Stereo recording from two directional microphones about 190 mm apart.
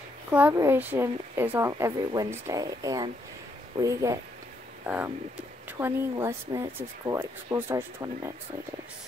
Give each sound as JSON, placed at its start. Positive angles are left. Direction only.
{"t": 0.3, "sound": "speech", "side_deg": -10}